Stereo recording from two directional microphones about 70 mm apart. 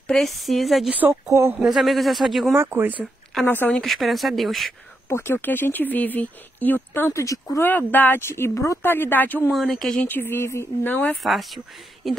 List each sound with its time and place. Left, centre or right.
0.1 s speech: centre
0.9 s speech: right
1.7 s speech: centre
2.5 s speech: right
3.4 s speech: left
3.7 s speech: centre
5.1 s speech: left
7.1 s speech: left
7.6 s speech: left
8.8 s speech: left
9.5 s speech: centre
10.0 s speech: left
10.9 s speech: left
11.2 s speech: centre